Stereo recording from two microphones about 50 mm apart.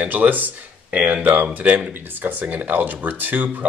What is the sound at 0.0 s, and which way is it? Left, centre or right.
Speech, right.